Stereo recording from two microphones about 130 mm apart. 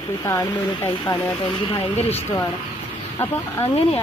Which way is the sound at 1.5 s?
45° left (ahead or behind).